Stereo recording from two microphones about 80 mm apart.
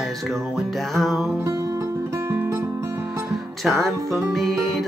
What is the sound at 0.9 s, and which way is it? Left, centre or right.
Music, centre.